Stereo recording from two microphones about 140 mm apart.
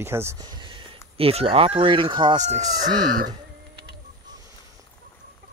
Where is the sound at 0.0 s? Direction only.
20° right (ahead or behind).